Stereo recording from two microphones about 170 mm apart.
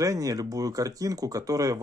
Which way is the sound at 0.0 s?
20° right (ahead or behind).